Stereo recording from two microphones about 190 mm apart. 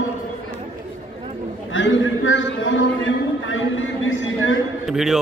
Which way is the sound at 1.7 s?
90° left.